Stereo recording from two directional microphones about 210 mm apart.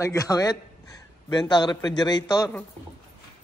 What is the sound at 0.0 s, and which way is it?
A man's voice, 15° left (ahead or behind).